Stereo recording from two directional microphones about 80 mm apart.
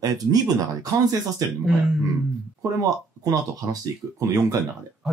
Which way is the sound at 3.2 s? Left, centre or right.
Right.